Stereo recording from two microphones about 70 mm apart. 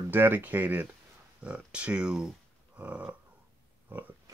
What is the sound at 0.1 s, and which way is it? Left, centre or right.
Speech, right.